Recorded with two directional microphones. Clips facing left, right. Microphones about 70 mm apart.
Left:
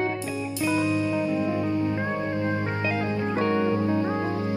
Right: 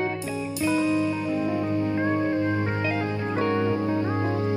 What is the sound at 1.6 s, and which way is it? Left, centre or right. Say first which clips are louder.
Music: right 1 dB; right.